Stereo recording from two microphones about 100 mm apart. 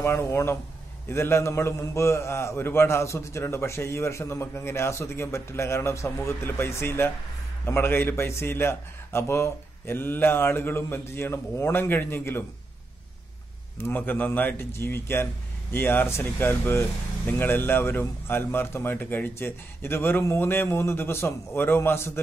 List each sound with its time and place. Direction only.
0.0 s a man's voice: 25° left (ahead or behind)
13.7 s a man's voice: 20° left (ahead or behind)